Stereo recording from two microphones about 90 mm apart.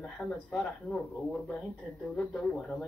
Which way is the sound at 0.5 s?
10° left (ahead or behind).